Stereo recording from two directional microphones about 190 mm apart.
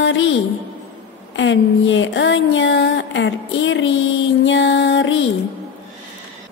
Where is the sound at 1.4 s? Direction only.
85° left.